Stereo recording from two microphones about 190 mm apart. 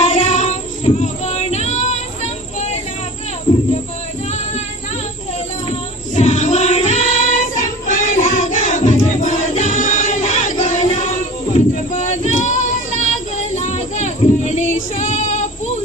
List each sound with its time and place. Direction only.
0.0 s child singing: 40° left (ahead or behind)
5.7 s child singing: 35° left (ahead or behind)
12.2 s child singing: 40° left (ahead or behind)